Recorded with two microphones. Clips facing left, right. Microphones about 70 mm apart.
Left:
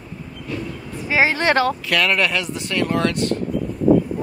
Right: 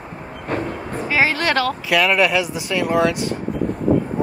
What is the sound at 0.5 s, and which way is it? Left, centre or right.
Vehicle, right.